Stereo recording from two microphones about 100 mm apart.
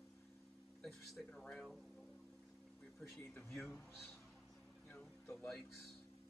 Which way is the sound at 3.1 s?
25° left (ahead or behind).